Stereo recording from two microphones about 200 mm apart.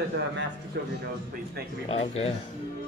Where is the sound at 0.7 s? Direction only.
55° right (ahead or behind).